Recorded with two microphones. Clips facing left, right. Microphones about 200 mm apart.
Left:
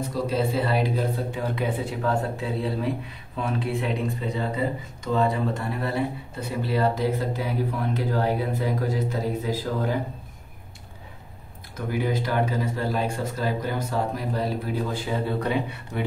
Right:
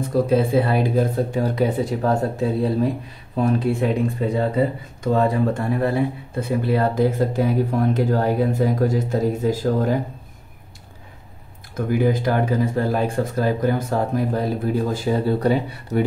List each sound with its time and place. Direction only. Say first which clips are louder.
0.1 s speech: right 9 dB; 55° right (ahead or behind)
11.7 s speech: right 7 dB; 50° right (ahead or behind)
14.9 s speech: right 7 dB; 35° right (ahead or behind)